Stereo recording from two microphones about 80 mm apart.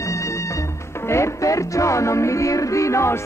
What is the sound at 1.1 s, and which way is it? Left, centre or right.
Music, left.